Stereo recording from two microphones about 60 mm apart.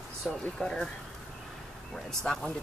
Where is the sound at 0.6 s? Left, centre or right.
Centre.